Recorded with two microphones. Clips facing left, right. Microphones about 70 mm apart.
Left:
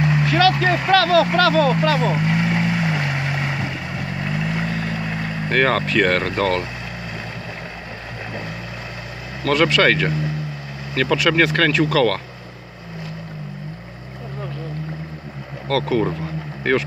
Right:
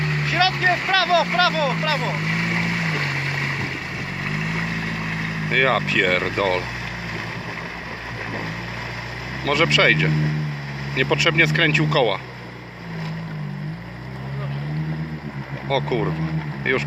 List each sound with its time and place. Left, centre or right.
0.3 s speech: centre
0.9 s vehicle: centre
9.4 s speech: centre
15.7 s speech: centre